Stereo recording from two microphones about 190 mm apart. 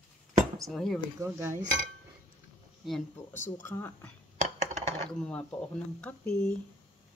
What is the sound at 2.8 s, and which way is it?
Speech, centre (ahead or behind).